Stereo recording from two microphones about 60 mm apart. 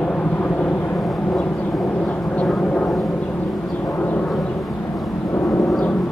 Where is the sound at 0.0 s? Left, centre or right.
Left.